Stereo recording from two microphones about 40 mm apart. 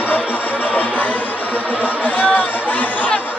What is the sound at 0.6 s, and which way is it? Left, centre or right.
Music, left.